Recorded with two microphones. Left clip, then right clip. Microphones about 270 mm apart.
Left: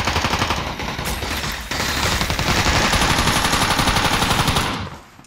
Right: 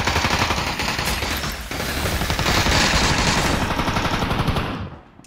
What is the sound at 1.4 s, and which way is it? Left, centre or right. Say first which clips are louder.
Mechanisms: left 3 dB; centre.